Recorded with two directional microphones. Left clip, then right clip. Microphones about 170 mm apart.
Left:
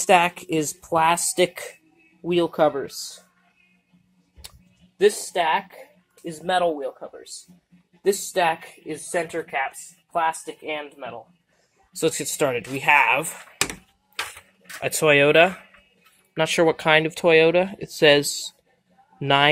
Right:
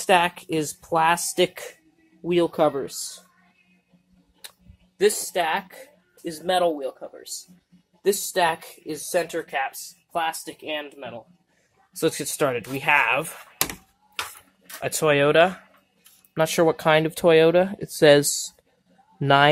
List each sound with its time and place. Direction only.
0.0 s speech: 5° left (ahead or behind)
4.9 s speech: centre (ahead or behind)
8.0 s speech: centre (ahead or behind)
14.8 s speech: centre (ahead or behind)
16.3 s speech: 15° right (ahead or behind); by 18.5 s 30° right (ahead or behind)
19.1 s speech: 20° right (ahead or behind)